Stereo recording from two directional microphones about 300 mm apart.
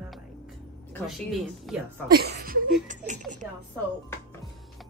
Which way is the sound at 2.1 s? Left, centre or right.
Right.